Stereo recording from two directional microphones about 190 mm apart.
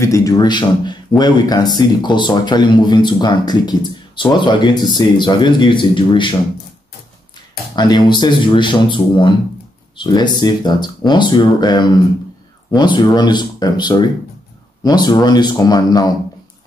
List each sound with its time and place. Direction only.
0.0 s speech: 15° left (ahead or behind)
7.7 s speech: 20° left (ahead or behind)